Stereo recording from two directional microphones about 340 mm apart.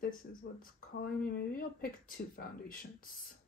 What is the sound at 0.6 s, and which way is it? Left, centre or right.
Speech, left.